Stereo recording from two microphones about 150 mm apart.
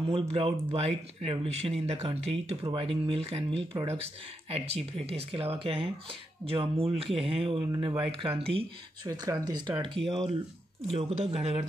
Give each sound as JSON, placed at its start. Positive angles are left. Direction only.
{"t": 0.1, "sound": "speech", "side_deg": -40}
{"t": 9.0, "sound": "speech", "side_deg": -25}